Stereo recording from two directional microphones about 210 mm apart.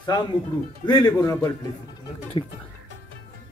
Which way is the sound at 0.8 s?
20° left (ahead or behind).